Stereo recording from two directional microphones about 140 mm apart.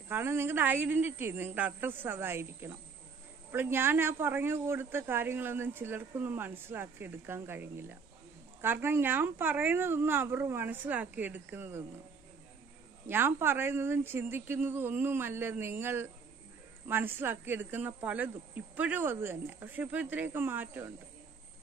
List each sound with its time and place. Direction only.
0.1 s a woman's voice: 15° right (ahead or behind)
13.0 s a woman's voice: 15° right (ahead or behind)